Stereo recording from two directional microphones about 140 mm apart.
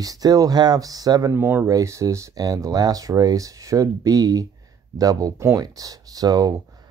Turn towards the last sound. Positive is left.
turn(degrees=-25)  # may be behind; listen again after turning